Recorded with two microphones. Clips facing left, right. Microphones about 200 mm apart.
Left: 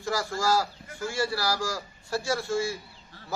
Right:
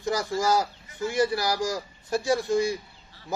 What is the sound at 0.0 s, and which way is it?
A man's voice, 20° right (ahead or behind).